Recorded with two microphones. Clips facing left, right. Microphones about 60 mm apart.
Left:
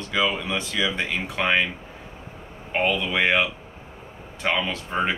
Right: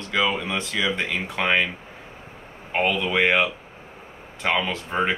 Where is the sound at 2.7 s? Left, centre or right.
Centre.